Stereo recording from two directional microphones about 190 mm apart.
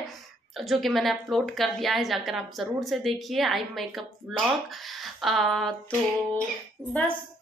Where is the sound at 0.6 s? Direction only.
Centre (ahead or behind).